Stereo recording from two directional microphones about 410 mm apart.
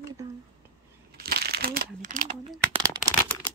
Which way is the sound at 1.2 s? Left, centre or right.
Right.